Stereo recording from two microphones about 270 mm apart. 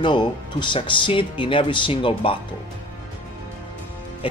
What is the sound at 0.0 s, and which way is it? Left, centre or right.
Speech, centre.